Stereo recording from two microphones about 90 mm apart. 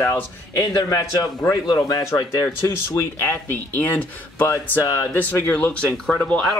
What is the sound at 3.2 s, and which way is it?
Speech, 25° left (ahead or behind).